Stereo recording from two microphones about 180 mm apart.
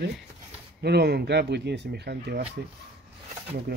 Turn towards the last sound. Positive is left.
turn(degrees=-65)  # may be behind; listen again after turning